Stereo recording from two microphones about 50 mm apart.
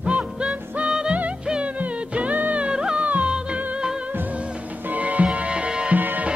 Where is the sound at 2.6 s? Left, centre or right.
Centre.